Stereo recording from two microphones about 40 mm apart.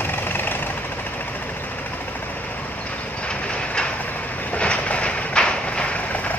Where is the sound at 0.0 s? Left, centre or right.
Left.